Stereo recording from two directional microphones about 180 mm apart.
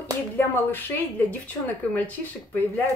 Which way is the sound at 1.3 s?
10° left (ahead or behind).